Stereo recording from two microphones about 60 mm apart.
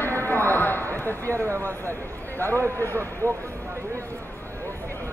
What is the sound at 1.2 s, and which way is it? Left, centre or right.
Speech, right.